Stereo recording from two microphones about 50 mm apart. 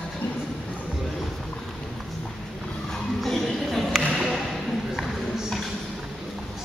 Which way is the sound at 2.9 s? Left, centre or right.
Centre.